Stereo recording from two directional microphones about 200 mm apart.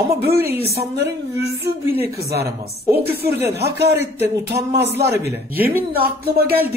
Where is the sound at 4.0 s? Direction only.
10° right (ahead or behind).